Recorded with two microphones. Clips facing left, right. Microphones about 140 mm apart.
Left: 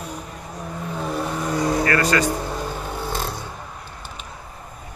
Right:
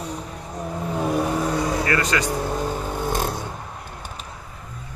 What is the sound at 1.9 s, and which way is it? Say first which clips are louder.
Speech: left 3 dB; 20° right (ahead or behind).